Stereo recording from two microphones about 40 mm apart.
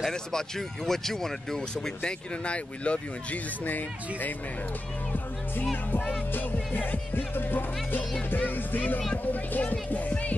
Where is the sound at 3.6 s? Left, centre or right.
Left.